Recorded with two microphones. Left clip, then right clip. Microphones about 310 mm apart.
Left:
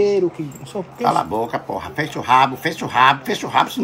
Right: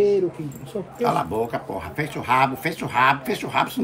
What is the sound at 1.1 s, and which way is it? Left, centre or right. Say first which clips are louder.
Speech: left 5 dB; centre.